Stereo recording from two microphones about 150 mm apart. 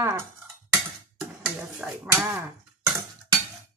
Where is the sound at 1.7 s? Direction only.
5° right (ahead or behind).